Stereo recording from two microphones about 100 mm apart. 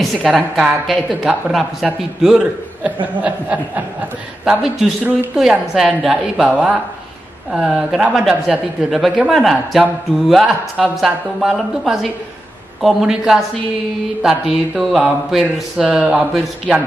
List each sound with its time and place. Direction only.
0.0 s a woman's voice: 5° right (ahead or behind)
4.5 s speech: 5° right (ahead or behind)
5.0 s a woman's voice: 20° right (ahead or behind)
5.4 s a woman's voice: 5° right (ahead or behind)
14.8 s speech: centre (ahead or behind)